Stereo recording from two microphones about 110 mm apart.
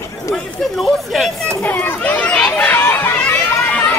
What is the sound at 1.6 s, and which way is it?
Chatter, 15° left (ahead or behind).